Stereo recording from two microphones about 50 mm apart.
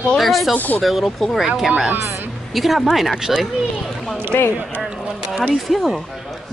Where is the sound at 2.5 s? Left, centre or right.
Centre.